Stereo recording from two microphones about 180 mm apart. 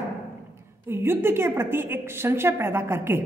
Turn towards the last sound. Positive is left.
turn(degrees=-15)  # may be behind; listen again after turning